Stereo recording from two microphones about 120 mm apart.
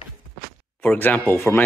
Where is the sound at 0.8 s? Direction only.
15° left (ahead or behind).